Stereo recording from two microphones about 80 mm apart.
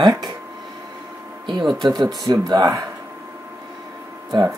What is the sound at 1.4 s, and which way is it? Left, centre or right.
Speech, right.